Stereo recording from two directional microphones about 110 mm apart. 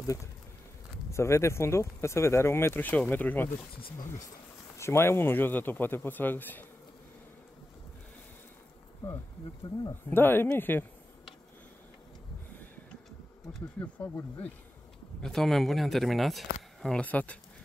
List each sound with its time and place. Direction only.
0.0 s speech: 30° left (ahead or behind)
4.7 s speech: 25° left (ahead or behind)
10.0 s speech: 20° left (ahead or behind)
13.7 s speech: 20° left (ahead or behind)
15.2 s speech: 5° left (ahead or behind)